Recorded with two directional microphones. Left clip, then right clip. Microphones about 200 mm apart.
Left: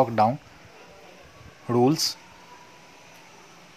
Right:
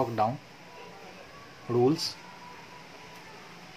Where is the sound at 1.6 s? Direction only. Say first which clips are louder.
Left 4 dB; 55° left (ahead or behind).